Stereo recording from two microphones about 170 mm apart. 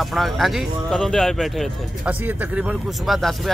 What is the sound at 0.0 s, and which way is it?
A man's voice, centre (ahead or behind).